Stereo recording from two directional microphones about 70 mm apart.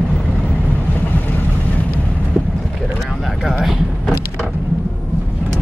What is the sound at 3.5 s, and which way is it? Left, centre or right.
Speech, centre.